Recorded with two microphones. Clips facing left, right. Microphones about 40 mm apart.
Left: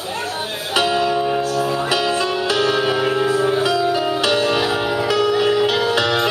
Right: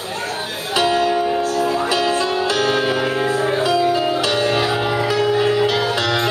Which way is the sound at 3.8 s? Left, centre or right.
Centre.